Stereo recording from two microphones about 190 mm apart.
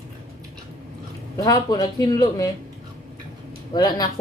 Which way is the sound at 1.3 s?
20° left (ahead or behind).